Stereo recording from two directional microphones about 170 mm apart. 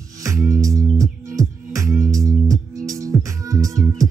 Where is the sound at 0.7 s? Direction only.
20° right (ahead or behind).